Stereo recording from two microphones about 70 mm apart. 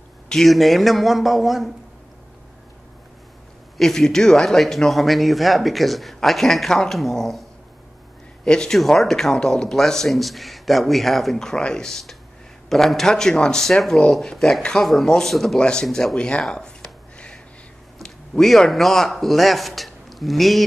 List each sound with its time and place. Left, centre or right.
0.3 s speech: centre
3.7 s speech: centre
8.5 s speech: centre
17.9 s speech: centre